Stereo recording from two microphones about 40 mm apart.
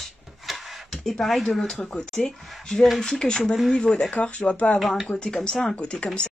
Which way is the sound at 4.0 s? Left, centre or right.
Left.